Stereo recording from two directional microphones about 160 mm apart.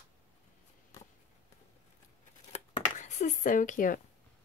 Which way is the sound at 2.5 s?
45° left (ahead or behind).